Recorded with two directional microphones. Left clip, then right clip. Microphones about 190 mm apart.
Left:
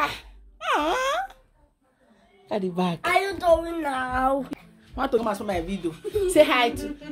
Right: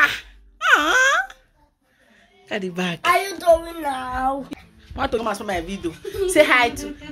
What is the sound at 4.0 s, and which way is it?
Speech, 20° left (ahead or behind).